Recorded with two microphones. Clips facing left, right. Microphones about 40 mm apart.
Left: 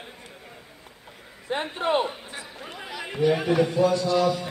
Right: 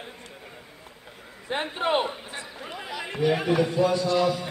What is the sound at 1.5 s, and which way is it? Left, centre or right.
Speech, right.